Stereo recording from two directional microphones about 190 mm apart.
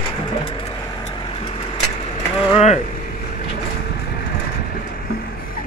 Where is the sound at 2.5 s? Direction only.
30° left (ahead or behind).